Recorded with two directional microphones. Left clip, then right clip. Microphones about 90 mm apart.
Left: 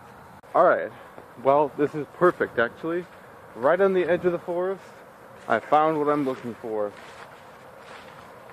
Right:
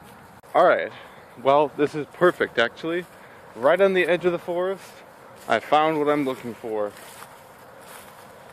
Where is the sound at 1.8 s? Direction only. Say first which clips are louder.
Right 1 dB; 35° right (ahead or behind); by 3.0 s 50° right (ahead or behind).